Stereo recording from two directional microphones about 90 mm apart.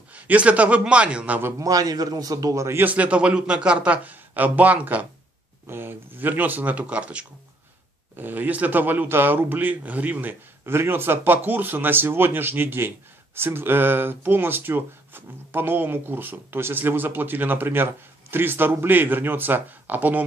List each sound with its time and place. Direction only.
0.1 s a man's voice: 15° right (ahead or behind)
1.6 s a man's voice: 40° right (ahead or behind)
2.8 s a man's voice: 15° right (ahead or behind)